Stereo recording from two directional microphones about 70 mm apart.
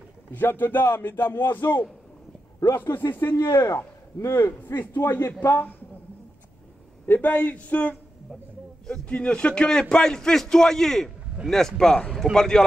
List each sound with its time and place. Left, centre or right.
0.3 s a man's voice: left
3.4 s a man's voice: left
7.1 s a man's voice: left
9.1 s a man's voice: centre